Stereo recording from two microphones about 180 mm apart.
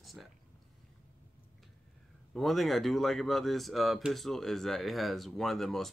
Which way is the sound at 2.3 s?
Centre (ahead or behind).